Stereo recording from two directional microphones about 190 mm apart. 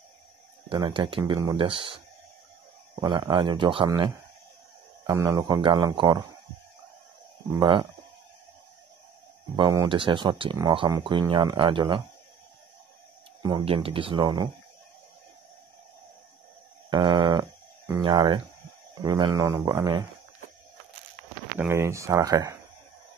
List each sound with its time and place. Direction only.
0.7 s speech: 25° right (ahead or behind)
3.0 s speech: 20° right (ahead or behind)
7.5 s speech: 25° right (ahead or behind)
9.6 s speech: 20° right (ahead or behind)
13.4 s speech: 20° right (ahead or behind)
16.9 s a sound: 20° right (ahead or behind)
18.9 s speech: 20° right (ahead or behind)
21.5 s speech: 10° right (ahead or behind)